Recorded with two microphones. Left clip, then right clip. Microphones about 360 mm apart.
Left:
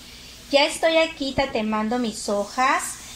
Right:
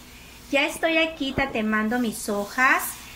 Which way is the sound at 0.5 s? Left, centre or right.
Centre.